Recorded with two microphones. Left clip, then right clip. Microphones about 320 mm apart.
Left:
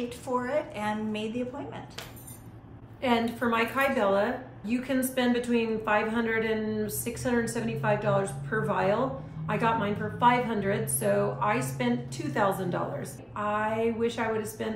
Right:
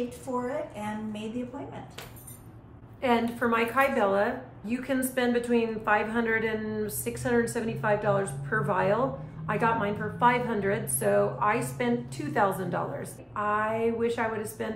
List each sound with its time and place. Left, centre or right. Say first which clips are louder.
0.5 s a woman's voice: left 4 dB; centre
3.0 s a woman's voice: right 1 dB; centre